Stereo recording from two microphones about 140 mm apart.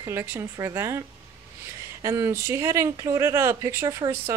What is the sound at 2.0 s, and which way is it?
Speech, 20° right (ahead or behind).